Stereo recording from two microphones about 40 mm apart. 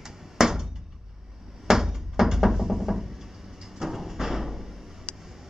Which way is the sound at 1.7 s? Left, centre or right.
Centre.